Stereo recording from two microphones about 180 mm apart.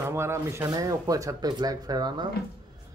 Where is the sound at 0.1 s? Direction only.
15° right (ahead or behind).